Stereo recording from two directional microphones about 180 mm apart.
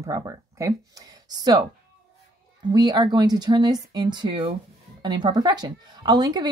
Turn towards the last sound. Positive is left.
turn(degrees=-25)  # may be behind; listen again after turning